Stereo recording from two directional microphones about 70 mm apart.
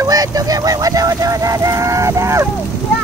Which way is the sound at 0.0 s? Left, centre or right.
Right.